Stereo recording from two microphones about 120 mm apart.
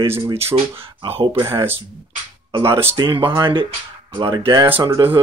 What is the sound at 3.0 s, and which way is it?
Speech, 45° right (ahead or behind).